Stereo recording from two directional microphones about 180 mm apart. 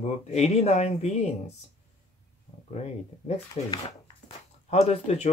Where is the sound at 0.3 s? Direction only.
35° left (ahead or behind).